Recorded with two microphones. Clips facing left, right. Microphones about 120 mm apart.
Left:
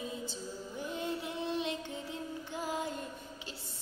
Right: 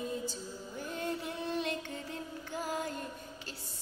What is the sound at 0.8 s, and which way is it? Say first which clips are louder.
Music: even; 15° left (ahead or behind).